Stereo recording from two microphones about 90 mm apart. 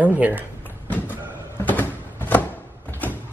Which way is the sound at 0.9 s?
20° left (ahead or behind).